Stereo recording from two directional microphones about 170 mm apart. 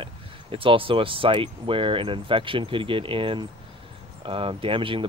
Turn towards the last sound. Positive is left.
turn(degrees=-30)  # may be behind; listen again after turning